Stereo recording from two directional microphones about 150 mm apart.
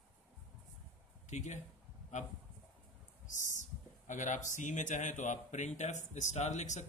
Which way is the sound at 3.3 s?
55° left (ahead or behind).